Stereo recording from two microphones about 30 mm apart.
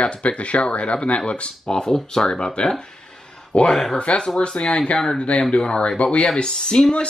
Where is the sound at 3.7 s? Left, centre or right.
Centre.